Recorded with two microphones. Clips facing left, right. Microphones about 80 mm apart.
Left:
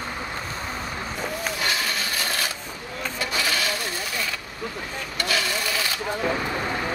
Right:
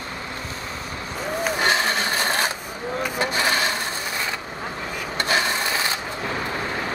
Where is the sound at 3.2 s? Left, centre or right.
Right.